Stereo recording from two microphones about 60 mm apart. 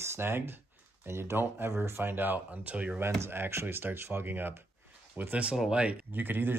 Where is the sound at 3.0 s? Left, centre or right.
Right.